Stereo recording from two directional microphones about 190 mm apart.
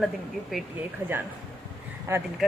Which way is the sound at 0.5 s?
Centre (ahead or behind).